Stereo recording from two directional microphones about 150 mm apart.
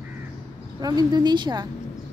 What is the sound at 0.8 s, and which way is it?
Speech, 30° right (ahead or behind).